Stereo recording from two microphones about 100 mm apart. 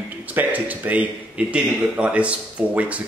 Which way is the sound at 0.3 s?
15° right (ahead or behind).